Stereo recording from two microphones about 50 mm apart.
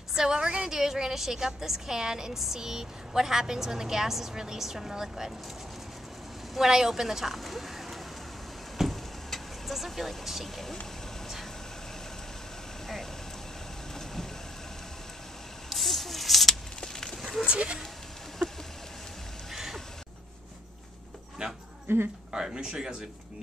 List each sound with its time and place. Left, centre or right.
0.1 s a woman's voice: centre
6.5 s speech: centre
8.7 s vehicle: centre
15.7 s a sound: centre
17.2 s goat: centre
17.5 s speech: right
19.5 s vehicle: centre
21.8 s speech: right
22.3 s a woman's voice: centre